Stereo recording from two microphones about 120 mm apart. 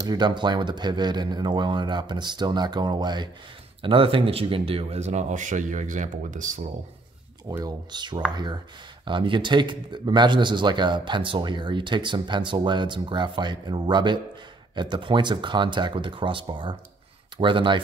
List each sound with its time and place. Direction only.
0.0 s a man's voice: 35° right (ahead or behind); by 6.6 s 90° right
7.4 s a man's voice: 30° right (ahead or behind)